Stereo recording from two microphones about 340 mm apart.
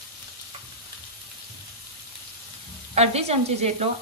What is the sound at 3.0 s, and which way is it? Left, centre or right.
Speech, centre.